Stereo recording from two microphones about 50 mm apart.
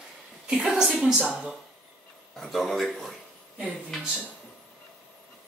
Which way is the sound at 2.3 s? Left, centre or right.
Centre.